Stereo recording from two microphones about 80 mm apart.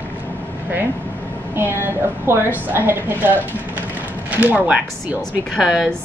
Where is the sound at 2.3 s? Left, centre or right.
Right.